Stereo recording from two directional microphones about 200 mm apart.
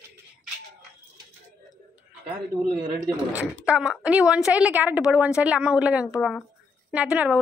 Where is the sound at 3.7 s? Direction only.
5° right (ahead or behind).